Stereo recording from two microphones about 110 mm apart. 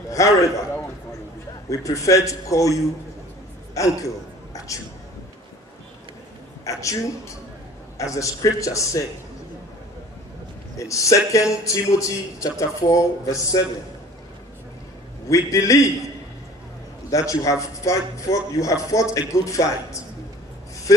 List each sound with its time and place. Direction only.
0.1 s a man's voice: 30° left (ahead or behind)
1.7 s a man's voice: 30° left (ahead or behind)
4.6 s whispering: 30° left (ahead or behind)
6.6 s a woman's voice: 30° left (ahead or behind)
8.0 s a man's voice: 30° left (ahead or behind)
10.8 s a man's voice: 30° left (ahead or behind)
15.2 s a man's voice: 30° left (ahead or behind)
17.1 s a man's voice: 30° left (ahead or behind)